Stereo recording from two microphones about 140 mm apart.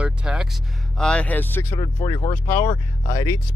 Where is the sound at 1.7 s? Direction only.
30° left (ahead or behind).